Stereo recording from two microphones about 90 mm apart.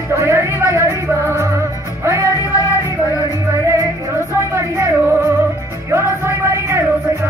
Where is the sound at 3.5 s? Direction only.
30° right (ahead or behind).